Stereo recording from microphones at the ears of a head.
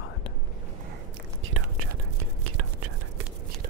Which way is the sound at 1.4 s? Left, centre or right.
Right.